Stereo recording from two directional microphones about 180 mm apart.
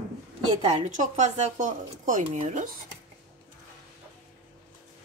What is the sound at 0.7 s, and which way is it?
Speech, 40° right (ahead or behind).